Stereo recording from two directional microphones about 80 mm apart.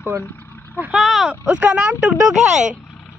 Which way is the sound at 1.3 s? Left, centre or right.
Centre.